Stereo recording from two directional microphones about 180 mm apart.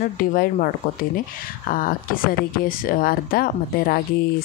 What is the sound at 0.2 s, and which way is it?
Speech, 50° left (ahead or behind).